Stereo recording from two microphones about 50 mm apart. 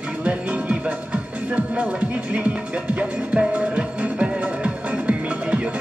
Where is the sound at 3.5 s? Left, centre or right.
Right.